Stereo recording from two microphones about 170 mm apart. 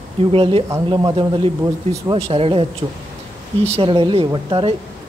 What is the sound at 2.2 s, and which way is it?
Speech, 35° right (ahead or behind).